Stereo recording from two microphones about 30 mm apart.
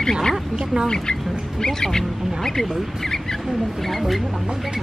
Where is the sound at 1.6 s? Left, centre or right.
Left.